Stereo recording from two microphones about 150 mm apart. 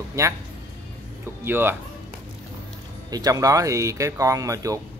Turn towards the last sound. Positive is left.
turn(degrees=-20)  # may be behind; listen again after turning